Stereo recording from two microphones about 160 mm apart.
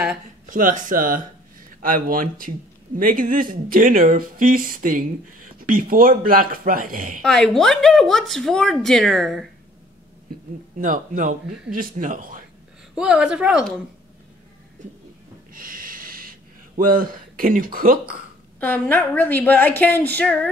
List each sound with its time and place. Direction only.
0.5 s speech: 55° right (ahead or behind)
7.2 s a woman's voice: 5° left (ahead or behind)
10.8 s speech: 55° right (ahead or behind)
12.9 s a woman's voice: 5° right (ahead or behind)
15.5 s a sound: 60° right (ahead or behind)
18.6 s a woman's voice: 10° left (ahead or behind)